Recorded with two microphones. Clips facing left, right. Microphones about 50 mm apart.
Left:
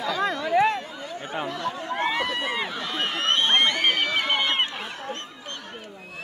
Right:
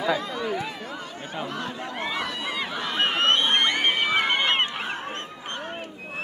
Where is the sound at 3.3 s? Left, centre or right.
Centre.